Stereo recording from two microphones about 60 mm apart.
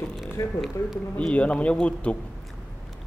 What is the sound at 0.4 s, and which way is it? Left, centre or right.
Speech, left.